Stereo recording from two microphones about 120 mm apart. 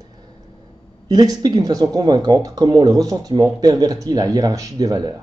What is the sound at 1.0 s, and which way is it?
Speech, 35° right (ahead or behind).